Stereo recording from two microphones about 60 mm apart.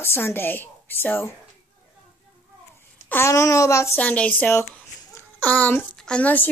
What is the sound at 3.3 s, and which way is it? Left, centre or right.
Speech, left.